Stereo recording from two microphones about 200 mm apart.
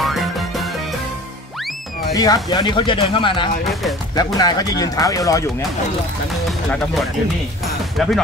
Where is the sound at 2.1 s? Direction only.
20° left (ahead or behind).